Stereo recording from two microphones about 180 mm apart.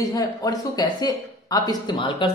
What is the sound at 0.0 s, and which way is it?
Speech, 20° left (ahead or behind).